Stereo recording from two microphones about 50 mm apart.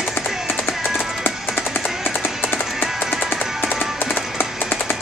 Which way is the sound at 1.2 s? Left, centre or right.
Left.